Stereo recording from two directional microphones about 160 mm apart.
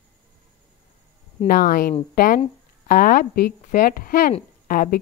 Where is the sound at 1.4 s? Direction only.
65° left (ahead or behind).